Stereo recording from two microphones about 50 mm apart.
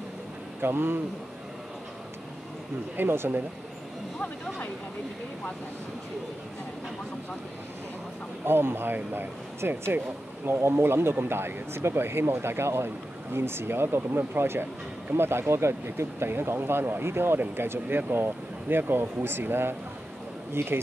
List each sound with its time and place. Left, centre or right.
0.6 s speech: right
3.0 s speech: right
8.5 s speech: right